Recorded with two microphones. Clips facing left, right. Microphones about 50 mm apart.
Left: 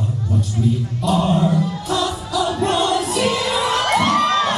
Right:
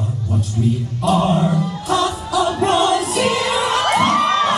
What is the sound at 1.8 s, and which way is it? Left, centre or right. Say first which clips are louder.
Music: right 3 dB; right.